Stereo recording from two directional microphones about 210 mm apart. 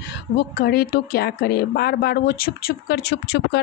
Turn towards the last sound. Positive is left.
turn(degrees=55)  # may be behind; listen again after turning